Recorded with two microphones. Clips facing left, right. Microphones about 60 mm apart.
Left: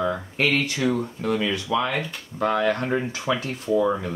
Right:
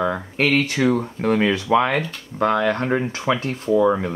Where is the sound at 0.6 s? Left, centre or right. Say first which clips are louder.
Right 4 dB; right.